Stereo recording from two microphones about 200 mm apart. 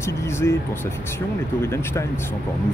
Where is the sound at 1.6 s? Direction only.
15° left (ahead or behind).